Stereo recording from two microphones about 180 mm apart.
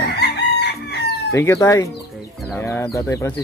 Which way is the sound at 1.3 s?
15° left (ahead or behind).